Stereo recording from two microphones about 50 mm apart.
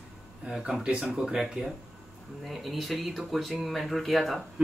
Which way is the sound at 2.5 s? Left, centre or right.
Centre.